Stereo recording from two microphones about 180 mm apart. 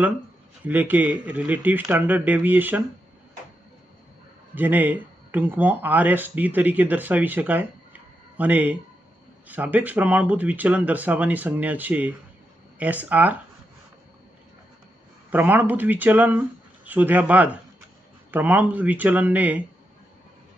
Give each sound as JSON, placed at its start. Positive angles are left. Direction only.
{"t": 0.7, "sound": "speech", "side_deg": -10}
{"t": 4.6, "sound": "speech", "side_deg": -10}
{"t": 15.3, "sound": "speech", "side_deg": -10}